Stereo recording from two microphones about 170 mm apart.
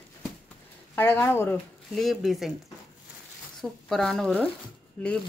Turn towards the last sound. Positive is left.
turn(degrees=5)  # may be behind; listen again after turning